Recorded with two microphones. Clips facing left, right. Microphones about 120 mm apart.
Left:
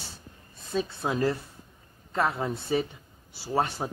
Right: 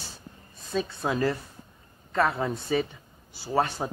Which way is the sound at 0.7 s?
10° left (ahead or behind).